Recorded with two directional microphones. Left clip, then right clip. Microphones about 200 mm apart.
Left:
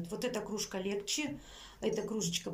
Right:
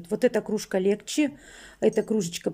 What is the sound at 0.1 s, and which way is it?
Speech, 45° right (ahead or behind).